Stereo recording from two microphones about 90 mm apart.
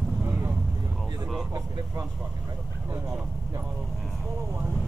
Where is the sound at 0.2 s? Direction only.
25° right (ahead or behind).